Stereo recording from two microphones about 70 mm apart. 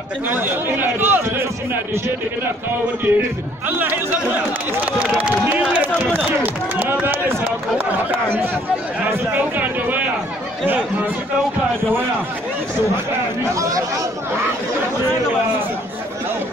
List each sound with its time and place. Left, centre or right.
0.3 s a man's voice: right
3.1 s speech: right
6.1 s a man's voice: right
13.6 s speech: right